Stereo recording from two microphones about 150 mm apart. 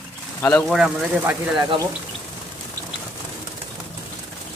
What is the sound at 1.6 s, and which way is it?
Speech, 25° right (ahead or behind).